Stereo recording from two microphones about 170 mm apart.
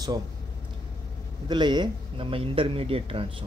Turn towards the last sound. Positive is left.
turn(degrees=-30)  # may be behind; listen again after turning